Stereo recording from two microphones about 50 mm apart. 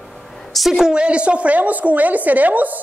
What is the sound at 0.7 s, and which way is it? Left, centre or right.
A woman's voice, centre.